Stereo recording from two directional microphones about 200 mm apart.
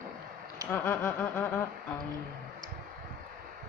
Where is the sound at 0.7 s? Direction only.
10° left (ahead or behind).